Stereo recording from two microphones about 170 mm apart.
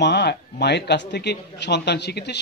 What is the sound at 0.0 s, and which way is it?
Speech, 80° left.